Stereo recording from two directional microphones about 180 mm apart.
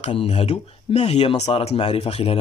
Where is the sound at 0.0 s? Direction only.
35° left (ahead or behind).